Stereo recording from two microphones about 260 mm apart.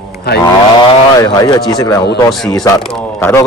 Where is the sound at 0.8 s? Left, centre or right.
Centre.